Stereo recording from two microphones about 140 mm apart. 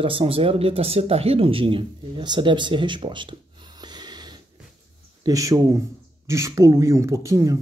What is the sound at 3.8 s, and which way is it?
Snort, 30° right (ahead or behind).